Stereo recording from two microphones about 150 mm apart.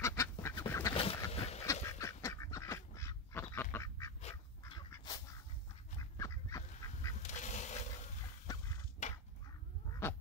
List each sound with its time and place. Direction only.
0.0 s duck: 20° left (ahead or behind)
0.9 s duck: 40° left (ahead or behind)
1.7 s duck: 20° left (ahead or behind)
4.9 s a sound: 25° left (ahead or behind)
5.9 s duck: 20° left (ahead or behind)
7.2 s goose: 50° left (ahead or behind)
9.0 s crow: 50° left (ahead or behind)